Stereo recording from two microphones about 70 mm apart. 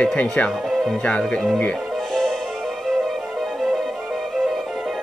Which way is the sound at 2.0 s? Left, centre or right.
Centre.